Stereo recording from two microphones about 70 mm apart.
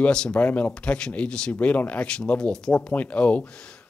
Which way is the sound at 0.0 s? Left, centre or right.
Centre.